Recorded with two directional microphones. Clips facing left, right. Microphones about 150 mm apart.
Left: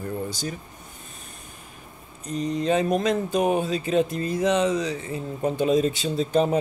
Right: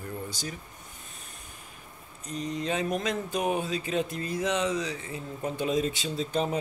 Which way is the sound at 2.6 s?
35° left (ahead or behind).